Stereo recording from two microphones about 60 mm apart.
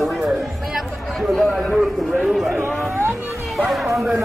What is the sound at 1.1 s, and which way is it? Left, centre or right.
A man's voice, centre.